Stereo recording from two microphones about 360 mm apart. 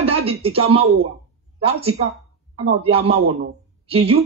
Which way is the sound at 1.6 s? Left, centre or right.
Centre.